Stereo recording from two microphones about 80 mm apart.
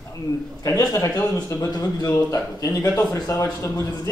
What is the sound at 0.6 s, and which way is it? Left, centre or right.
Speech, left.